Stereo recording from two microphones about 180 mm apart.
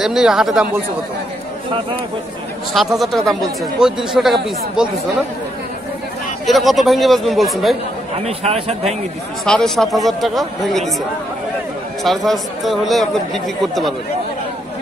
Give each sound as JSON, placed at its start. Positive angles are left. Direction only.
{"t": 0.0, "sound": "speech", "side_deg": -5}
{"t": 2.7, "sound": "speech", "side_deg": 0}
{"t": 6.4, "sound": "speech", "side_deg": 0}
{"t": 8.2, "sound": "a man's voice", "side_deg": -35}
{"t": 9.4, "sound": "speech", "side_deg": 0}
{"t": 12.3, "sound": "speech", "side_deg": 0}